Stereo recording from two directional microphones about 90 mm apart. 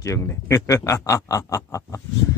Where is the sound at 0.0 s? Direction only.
35° left (ahead or behind).